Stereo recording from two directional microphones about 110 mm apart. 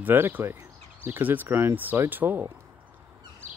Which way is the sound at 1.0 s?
20° right (ahead or behind).